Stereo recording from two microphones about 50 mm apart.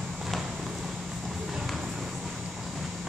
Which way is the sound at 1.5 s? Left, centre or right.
Centre.